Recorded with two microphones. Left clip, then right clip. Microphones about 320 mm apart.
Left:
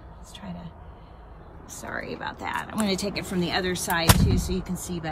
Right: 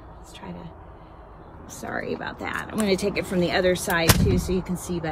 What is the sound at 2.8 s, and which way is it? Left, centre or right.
Speech, centre.